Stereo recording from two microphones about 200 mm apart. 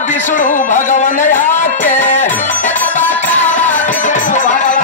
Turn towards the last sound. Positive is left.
turn(degrees=40)  # may be behind; listen again after turning